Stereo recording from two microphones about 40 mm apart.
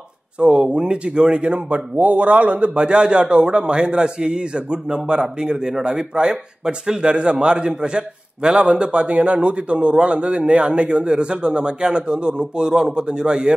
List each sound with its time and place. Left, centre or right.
0.5 s speech: centre